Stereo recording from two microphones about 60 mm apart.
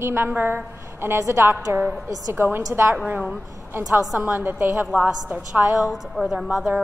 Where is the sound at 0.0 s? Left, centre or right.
Right.